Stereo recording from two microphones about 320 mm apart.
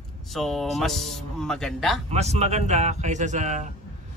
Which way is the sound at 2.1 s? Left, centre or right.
Centre.